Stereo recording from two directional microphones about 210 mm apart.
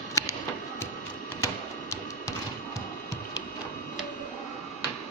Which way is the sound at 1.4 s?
15° left (ahead or behind).